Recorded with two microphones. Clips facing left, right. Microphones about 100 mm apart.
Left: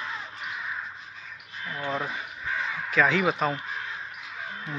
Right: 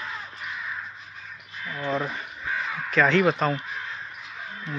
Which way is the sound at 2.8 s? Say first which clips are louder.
Right 3 dB; 5° left (ahead or behind).